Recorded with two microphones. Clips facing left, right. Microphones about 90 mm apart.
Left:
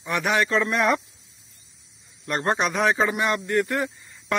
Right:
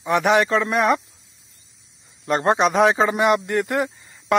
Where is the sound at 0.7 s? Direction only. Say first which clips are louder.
Right 4 dB; 10° right (ahead or behind).